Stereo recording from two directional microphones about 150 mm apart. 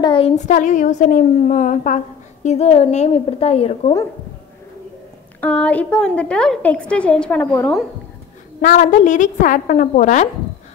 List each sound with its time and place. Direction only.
0.0 s a sound: 35° left (ahead or behind)
0.4 s a woman's voice: 55° left (ahead or behind)
2.4 s a woman's voice: 45° left (ahead or behind)
5.4 s a woman's voice: 10° left (ahead or behind)
8.5 s a woman's voice: 55° left (ahead or behind)